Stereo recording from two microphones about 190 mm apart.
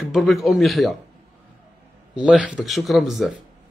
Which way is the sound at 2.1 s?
5° right (ahead or behind).